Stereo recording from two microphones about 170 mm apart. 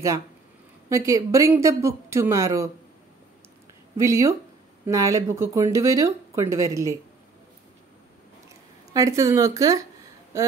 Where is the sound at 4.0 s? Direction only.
15° right (ahead or behind).